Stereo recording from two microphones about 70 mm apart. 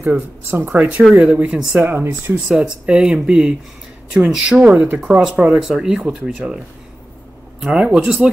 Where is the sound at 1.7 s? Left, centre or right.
Right.